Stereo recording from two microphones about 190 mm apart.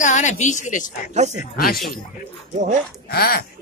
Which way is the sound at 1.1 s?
35° right (ahead or behind).